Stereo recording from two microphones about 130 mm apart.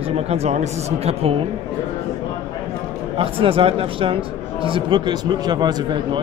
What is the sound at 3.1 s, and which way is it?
Speech, 45° right (ahead or behind).